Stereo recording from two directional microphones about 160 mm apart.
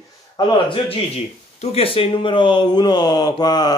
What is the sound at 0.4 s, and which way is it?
Speech, 30° left (ahead or behind).